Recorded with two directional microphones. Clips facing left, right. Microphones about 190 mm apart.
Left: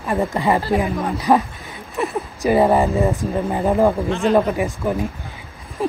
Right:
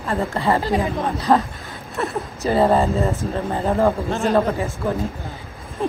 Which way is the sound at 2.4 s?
15° left (ahead or behind).